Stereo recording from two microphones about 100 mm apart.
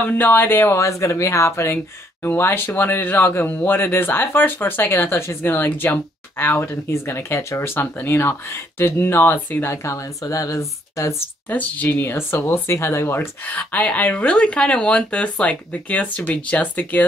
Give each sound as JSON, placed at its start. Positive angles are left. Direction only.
{"t": 0.0, "sound": "speech", "side_deg": 15}
{"t": 11.4, "sound": "speech", "side_deg": 15}